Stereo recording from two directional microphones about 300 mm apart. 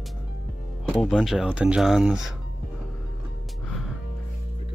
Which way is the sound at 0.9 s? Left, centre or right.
Centre.